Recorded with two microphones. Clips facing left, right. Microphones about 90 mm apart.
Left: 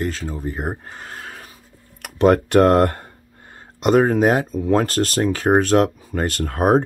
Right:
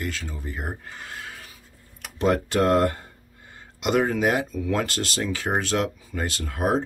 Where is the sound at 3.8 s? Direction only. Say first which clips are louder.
Left 7 dB; 40° left (ahead or behind).